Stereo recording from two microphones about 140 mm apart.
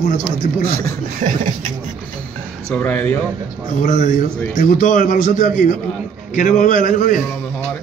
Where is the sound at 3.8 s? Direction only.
65° left (ahead or behind).